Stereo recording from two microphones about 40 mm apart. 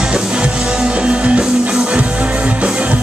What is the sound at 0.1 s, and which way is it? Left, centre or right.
Music, right.